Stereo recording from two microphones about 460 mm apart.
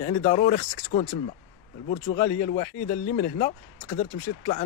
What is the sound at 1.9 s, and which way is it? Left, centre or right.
Speech, centre.